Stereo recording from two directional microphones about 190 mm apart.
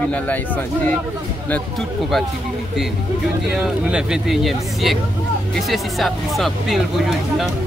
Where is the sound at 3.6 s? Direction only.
5° right (ahead or behind).